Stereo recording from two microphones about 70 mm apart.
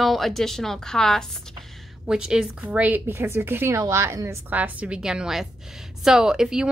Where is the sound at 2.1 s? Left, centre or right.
Centre.